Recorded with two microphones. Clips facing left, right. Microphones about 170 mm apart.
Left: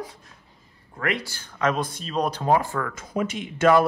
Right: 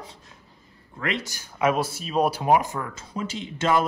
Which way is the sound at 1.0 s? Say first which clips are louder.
Left 1 dB; 25° right (ahead or behind).